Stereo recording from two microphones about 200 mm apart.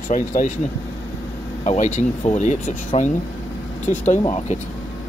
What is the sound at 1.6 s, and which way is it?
Speech, 35° left (ahead or behind).